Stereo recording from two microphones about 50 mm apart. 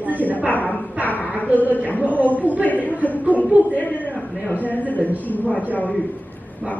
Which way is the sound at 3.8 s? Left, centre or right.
Left.